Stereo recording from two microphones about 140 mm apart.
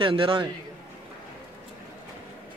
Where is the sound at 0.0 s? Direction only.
40° right (ahead or behind).